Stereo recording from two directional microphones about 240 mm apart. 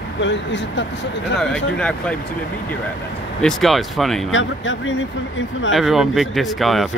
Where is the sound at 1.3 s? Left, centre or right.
Centre.